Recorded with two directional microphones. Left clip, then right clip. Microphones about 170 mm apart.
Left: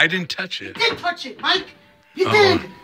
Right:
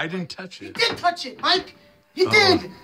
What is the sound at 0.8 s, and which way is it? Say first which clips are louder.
Speech: even; 30° right (ahead or behind).